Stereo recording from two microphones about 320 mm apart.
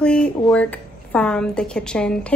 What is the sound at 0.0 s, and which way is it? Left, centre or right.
A woman's voice, centre.